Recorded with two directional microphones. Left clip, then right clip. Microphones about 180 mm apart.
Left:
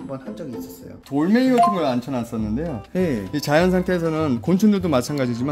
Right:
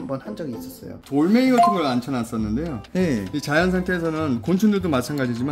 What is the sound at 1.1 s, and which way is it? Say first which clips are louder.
Speech: even; 45° left (ahead or behind).